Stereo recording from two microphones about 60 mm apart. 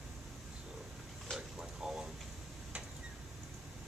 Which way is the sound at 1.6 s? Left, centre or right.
Centre.